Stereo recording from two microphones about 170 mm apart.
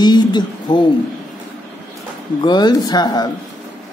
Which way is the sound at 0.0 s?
25° left (ahead or behind).